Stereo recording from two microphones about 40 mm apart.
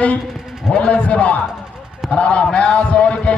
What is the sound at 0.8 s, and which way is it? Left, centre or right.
A man's voice, left.